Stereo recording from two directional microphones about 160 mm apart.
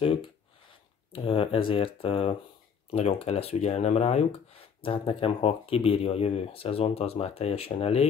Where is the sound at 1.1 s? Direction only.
35° left (ahead or behind).